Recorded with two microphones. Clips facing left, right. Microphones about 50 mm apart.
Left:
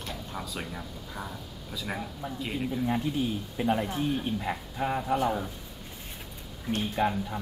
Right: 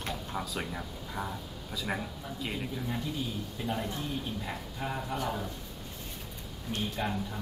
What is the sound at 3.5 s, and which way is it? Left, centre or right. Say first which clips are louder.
A man's voice: left 7 dB; left.